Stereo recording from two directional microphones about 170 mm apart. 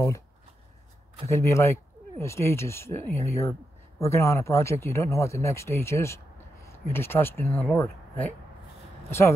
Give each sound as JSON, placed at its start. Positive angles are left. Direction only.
{"t": 1.3, "sound": "speech", "side_deg": 15}